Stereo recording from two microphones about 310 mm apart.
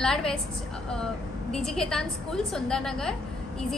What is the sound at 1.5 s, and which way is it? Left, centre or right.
A woman's voice, centre.